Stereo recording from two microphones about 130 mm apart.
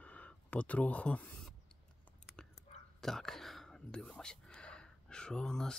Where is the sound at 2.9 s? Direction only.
5° left (ahead or behind).